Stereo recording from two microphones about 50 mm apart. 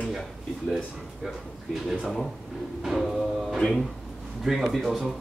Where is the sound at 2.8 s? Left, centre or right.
Centre.